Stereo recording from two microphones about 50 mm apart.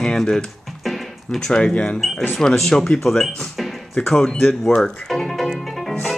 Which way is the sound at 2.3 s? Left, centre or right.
Centre.